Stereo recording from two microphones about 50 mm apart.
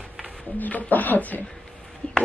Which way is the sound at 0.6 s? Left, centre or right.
Left.